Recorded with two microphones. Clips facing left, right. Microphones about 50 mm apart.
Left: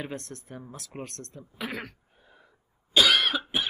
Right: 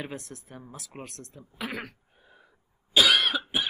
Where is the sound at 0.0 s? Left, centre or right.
Centre.